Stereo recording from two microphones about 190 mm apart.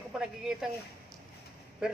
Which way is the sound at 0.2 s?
5° right (ahead or behind).